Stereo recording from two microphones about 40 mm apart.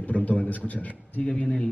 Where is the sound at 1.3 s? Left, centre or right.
Left.